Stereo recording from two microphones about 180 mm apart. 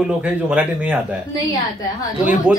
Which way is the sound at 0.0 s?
5° right (ahead or behind).